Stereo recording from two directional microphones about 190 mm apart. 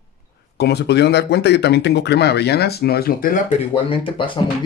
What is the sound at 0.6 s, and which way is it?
Speech, 60° left (ahead or behind).